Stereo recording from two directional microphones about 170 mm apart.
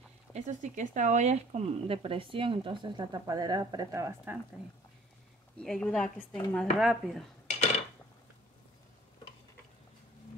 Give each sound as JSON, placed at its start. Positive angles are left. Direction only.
{"t": 0.3, "sound": "speech", "side_deg": -45}
{"t": 5.6, "sound": "speech", "side_deg": 5}